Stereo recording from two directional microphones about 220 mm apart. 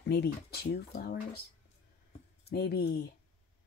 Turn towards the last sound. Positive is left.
turn(degrees=50)  # may be behind; listen again after turning